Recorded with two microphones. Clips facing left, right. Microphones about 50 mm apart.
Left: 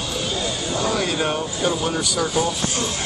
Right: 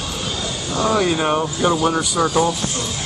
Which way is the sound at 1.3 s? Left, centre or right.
Right.